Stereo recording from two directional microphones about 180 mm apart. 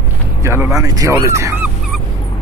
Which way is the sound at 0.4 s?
15° right (ahead or behind).